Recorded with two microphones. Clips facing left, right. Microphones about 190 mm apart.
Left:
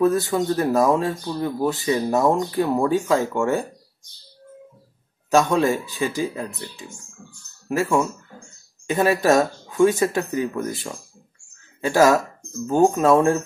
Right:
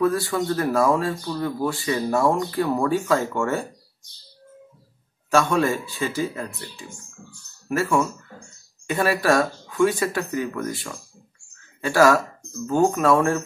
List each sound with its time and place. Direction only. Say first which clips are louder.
0.0 s speech: left 3 dB; 20° left (ahead or behind)
5.3 s speech: left 2 dB; 15° left (ahead or behind)